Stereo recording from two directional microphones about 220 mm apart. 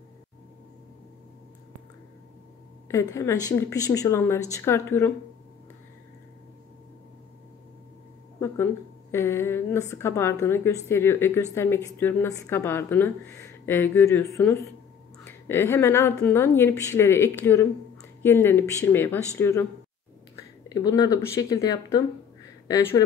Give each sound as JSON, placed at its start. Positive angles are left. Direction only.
{"t": 2.9, "sound": "a woman's voice", "side_deg": 15}
{"t": 9.1, "sound": "a woman's voice", "side_deg": 10}
{"t": 20.6, "sound": "a woman's voice", "side_deg": 20}